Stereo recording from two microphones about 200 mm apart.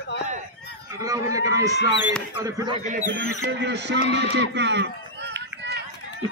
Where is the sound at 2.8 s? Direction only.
40° right (ahead or behind).